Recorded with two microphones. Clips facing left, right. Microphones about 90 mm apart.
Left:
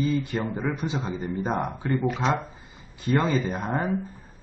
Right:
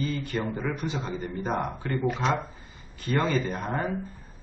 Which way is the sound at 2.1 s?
Centre (ahead or behind).